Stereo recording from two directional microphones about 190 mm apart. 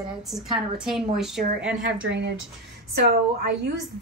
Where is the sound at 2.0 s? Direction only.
70° right (ahead or behind).